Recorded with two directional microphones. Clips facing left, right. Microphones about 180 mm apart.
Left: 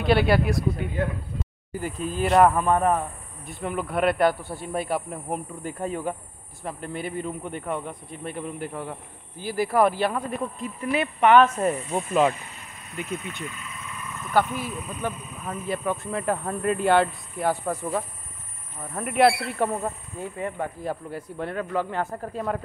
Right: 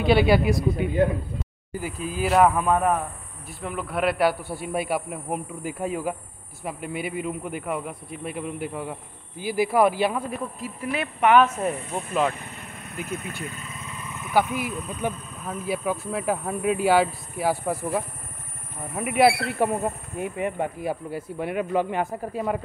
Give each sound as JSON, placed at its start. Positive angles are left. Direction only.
{"t": 0.0, "sound": "speech", "side_deg": 0}
{"t": 13.0, "sound": "speech", "side_deg": -55}
{"t": 13.4, "sound": "speech", "side_deg": -40}
{"t": 14.1, "sound": "speech", "side_deg": -15}
{"t": 14.7, "sound": "speech", "side_deg": 0}
{"t": 19.6, "sound": "speech", "side_deg": -15}